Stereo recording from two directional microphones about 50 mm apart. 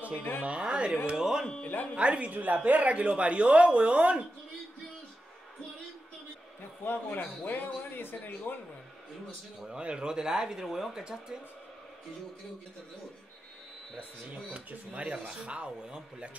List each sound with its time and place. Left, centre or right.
0.1 s speech: left
0.4 s speech: right
1.1 s speech: centre
1.6 s speech: left
2.0 s speech: right
6.8 s a man's voice: left
9.7 s speech: centre
14.5 s speech: right